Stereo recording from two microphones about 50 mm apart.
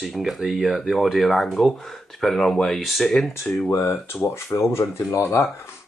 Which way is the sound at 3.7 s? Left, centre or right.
Left.